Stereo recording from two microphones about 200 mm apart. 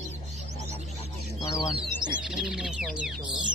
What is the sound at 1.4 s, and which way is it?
Speech, 20° left (ahead or behind).